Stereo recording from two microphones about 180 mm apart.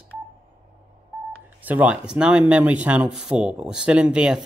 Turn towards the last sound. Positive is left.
turn(degrees=-5)  # may be behind; listen again after turning